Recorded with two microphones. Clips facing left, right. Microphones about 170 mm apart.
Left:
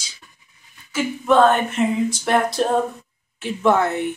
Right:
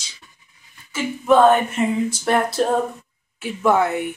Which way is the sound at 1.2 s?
5° right (ahead or behind).